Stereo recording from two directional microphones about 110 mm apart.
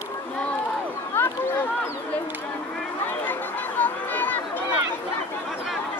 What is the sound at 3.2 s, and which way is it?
Chatter, 15° left (ahead or behind).